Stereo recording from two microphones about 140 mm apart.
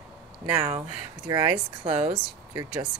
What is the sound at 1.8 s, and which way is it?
Speech, 40° right (ahead or behind).